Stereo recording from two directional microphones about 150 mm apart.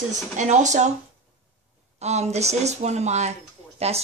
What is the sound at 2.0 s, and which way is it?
Speech, 45° right (ahead or behind).